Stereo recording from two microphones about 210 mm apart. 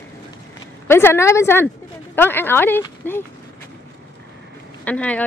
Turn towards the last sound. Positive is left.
turn(degrees=5)  # may be behind; listen again after turning